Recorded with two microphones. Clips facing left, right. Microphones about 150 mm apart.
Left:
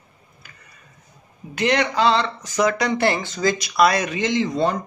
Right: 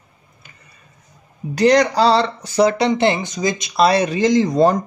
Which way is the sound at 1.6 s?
35° right (ahead or behind).